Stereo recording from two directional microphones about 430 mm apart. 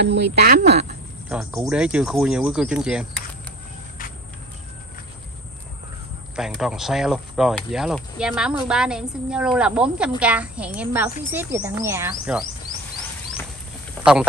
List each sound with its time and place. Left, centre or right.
0.0 s speech: right
1.3 s speech: centre
6.3 s speech: centre